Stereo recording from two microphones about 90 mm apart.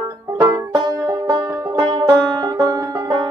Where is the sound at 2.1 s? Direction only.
35° right (ahead or behind).